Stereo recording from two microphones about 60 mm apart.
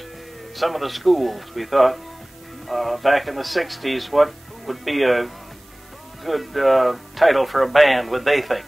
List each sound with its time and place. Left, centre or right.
0.6 s a man's voice: centre